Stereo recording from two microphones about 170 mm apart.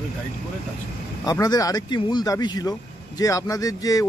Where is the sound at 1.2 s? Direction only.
20° left (ahead or behind).